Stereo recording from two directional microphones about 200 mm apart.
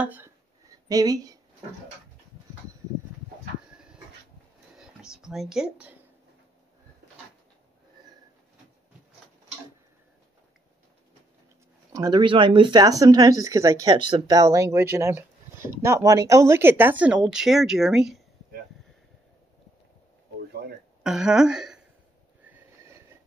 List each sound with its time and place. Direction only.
0.0 s speech: 10° right (ahead or behind)
4.7 s speech: 5° right (ahead or behind)
11.9 s speech: 20° right (ahead or behind); by 18.2 s centre (ahead or behind)
21.0 s a woman's voice: 5° right (ahead or behind)
22.5 s a sound: 10° right (ahead or behind)